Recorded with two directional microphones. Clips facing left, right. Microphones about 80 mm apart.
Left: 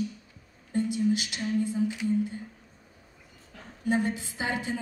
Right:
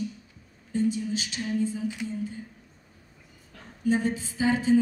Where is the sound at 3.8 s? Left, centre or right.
Left.